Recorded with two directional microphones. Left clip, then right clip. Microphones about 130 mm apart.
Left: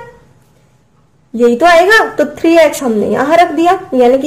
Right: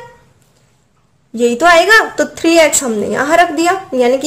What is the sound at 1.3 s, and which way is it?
A woman's voice, 15° right (ahead or behind).